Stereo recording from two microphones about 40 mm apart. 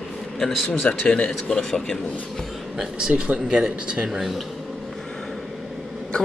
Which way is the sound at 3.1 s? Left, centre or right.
Centre.